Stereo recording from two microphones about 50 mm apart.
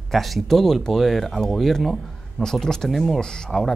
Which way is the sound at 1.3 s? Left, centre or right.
Centre.